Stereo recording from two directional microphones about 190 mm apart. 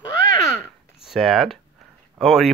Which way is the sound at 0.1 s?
15° left (ahead or behind).